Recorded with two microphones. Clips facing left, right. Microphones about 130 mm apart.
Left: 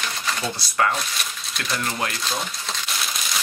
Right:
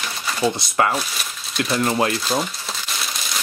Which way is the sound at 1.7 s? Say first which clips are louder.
Right 7 dB; 30° right (ahead or behind).